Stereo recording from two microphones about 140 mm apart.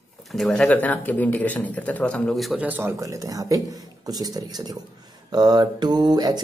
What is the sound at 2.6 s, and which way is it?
Speech, 15° right (ahead or behind).